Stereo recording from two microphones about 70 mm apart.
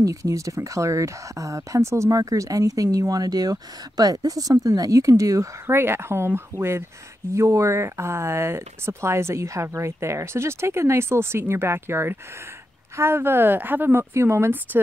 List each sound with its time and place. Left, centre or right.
0.0 s speech: right
5.7 s speech: right
14.1 s speech: right